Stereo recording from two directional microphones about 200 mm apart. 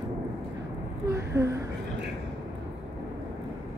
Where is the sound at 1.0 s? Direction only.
15° right (ahead or behind).